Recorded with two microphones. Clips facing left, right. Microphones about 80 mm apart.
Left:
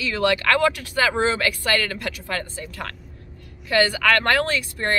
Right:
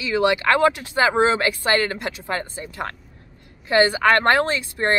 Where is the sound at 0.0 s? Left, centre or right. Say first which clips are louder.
Right 2 dB; centre.